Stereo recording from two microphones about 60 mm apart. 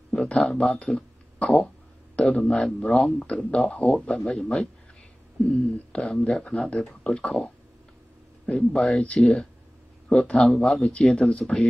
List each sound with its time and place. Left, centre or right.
0.3 s speech: centre
0.6 s speech: left
0.9 s a sound: left
2.1 s speech: centre